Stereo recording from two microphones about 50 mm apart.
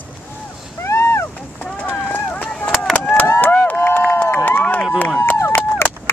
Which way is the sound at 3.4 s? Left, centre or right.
Left.